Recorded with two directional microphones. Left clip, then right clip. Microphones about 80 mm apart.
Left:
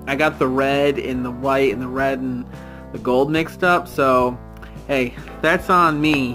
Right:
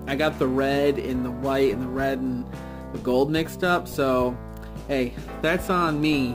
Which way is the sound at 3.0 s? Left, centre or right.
Right.